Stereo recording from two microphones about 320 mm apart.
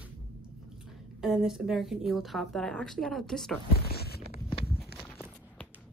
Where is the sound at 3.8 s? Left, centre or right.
Left.